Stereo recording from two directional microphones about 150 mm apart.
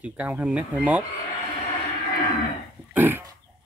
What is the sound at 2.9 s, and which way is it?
Livestock, 15° right (ahead or behind).